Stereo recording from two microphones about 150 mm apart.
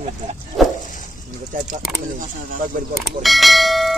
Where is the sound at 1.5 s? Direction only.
60° right (ahead or behind).